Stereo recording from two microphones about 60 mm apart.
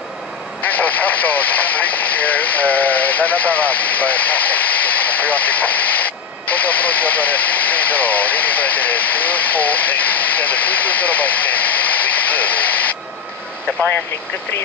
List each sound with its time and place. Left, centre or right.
0.7 s speech: left